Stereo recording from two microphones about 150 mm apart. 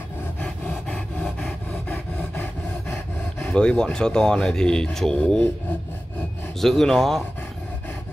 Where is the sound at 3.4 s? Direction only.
5° left (ahead or behind).